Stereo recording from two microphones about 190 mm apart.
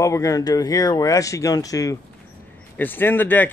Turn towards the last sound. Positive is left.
turn(degrees=10)  # may be behind; listen again after turning